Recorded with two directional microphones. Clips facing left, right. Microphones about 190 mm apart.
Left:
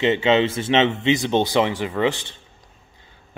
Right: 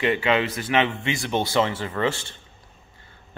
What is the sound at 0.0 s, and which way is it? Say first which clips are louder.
Speech: left 4 dB; 25° left (ahead or behind).